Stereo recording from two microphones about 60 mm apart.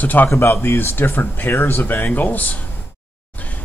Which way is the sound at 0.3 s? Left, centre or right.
Left.